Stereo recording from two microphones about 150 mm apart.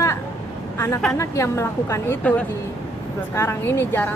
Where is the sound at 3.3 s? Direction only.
15° left (ahead or behind).